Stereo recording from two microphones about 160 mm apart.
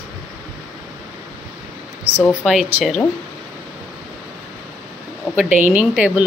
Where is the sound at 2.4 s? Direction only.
Centre (ahead or behind).